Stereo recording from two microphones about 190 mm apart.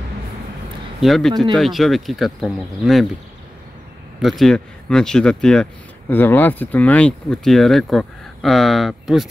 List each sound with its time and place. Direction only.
1.0 s speech: centre (ahead or behind)
1.3 s speech: 25° right (ahead or behind)
1.6 s speech: centre (ahead or behind)
4.2 s speech: centre (ahead or behind)